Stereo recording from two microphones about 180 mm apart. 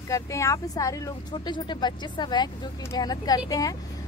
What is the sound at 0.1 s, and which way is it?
Speech, 20° left (ahead or behind).